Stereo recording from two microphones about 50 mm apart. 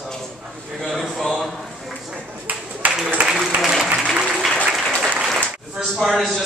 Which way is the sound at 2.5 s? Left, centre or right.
Right.